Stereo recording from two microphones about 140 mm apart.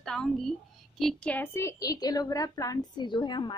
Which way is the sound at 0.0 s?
5° left (ahead or behind).